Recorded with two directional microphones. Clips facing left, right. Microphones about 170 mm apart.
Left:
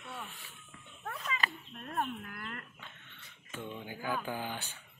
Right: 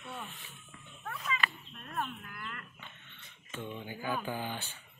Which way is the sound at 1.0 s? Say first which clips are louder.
Right 1 dB; 35° left (ahead or behind).